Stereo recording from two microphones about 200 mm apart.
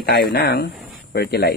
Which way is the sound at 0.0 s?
50° left (ahead or behind).